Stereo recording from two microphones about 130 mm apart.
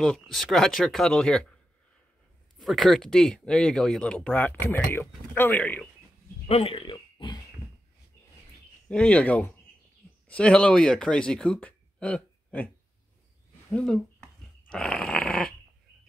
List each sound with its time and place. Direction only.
0.0 s speech: 5° left (ahead or behind)
2.6 s speech: centre (ahead or behind)
6.4 s a sound: 45° left (ahead or behind)
8.8 s speech: 10° left (ahead or behind)
13.7 s dog: 5° left (ahead or behind)